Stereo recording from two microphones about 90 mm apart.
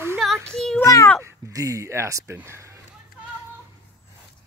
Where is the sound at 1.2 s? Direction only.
40° right (ahead or behind).